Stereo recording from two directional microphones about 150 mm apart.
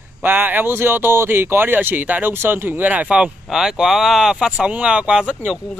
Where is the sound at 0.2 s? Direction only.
10° right (ahead or behind).